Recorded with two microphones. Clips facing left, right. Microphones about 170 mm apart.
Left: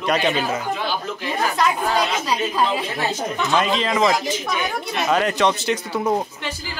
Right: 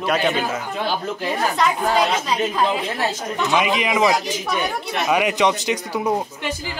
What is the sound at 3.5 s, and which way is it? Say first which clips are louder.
A man's voice: even; 10° right (ahead or behind).